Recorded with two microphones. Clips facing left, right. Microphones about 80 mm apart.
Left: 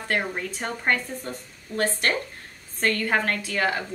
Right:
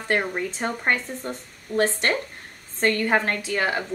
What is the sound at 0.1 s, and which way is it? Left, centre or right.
A woman's voice, centre.